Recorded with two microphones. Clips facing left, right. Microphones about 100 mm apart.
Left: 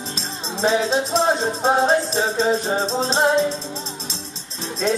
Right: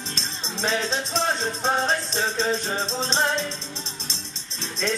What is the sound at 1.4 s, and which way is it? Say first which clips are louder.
Music: left 5 dB; 35° left (ahead or behind).